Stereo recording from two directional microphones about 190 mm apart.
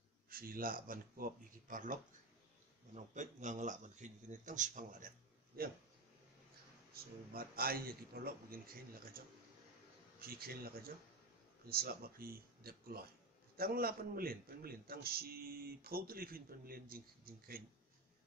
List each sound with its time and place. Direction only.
0.3 s a man's voice: 50° right (ahead or behind)
6.9 s a man's voice: 50° right (ahead or behind)
10.2 s a man's voice: 50° right (ahead or behind)